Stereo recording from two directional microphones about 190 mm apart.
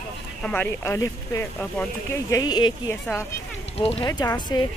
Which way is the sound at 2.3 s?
20° left (ahead or behind).